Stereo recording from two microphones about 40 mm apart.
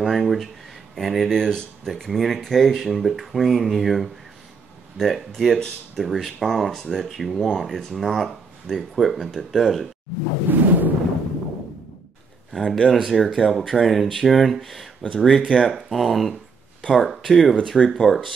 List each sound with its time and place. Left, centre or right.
0.0 s speech: centre
10.2 s whoosh: right
12.5 s speech: centre